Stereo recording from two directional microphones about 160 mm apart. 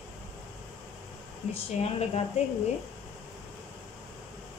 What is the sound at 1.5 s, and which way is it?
Speech, 40° left (ahead or behind).